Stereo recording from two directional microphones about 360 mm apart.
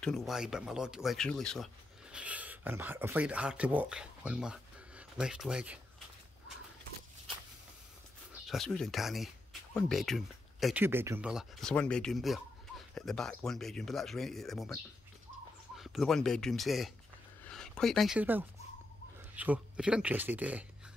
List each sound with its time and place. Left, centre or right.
0.0 s speech: centre
8.5 s speech: centre